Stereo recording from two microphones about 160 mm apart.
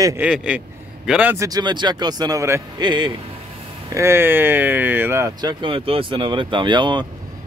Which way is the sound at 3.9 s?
15° right (ahead or behind).